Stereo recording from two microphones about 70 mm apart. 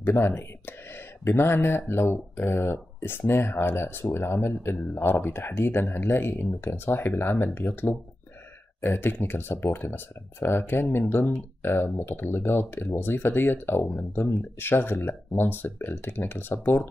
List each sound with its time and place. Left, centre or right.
0.0 s speech: left